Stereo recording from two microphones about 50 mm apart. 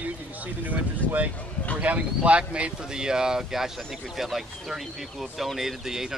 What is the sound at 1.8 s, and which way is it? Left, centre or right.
Speech, right.